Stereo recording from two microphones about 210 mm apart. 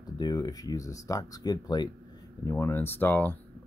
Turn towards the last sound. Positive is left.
turn(degrees=10)  # may be behind; listen again after turning